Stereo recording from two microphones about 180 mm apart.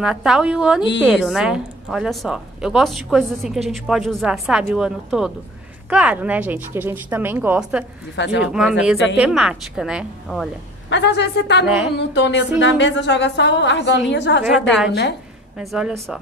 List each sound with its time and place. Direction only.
0.0 s a woman's voice: centre (ahead or behind)
8.2 s a woman's voice: 80° left
8.5 s a woman's voice: 5° right (ahead or behind)
10.9 s a woman's voice: 75° left (ahead or behind)
11.6 s a woman's voice: 5° right (ahead or behind)
12.1 s a woman's voice: 85° left
14.4 s a woman's voice: 5° right (ahead or behind)
14.9 s a woman's voice: 70° left (ahead or behind)
15.5 s a woman's voice: centre (ahead or behind)